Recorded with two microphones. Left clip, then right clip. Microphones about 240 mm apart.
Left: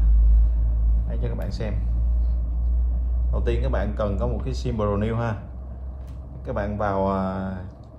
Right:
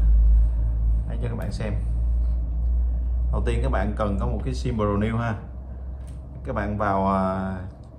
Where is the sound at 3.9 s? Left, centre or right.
Left.